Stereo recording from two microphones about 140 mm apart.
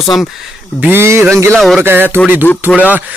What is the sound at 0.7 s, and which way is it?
Speech, 15° right (ahead or behind).